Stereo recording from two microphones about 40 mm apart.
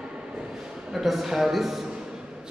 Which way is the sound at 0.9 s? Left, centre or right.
Centre.